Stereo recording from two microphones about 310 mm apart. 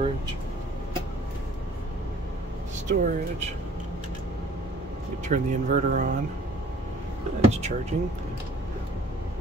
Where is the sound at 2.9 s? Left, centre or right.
Right.